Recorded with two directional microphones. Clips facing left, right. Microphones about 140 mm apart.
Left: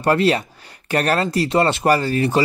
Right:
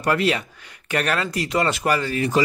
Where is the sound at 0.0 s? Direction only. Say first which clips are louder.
Left 4 dB; 35° left (ahead or behind).